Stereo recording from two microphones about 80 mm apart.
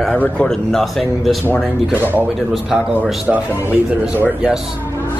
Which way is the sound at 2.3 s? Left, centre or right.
Centre.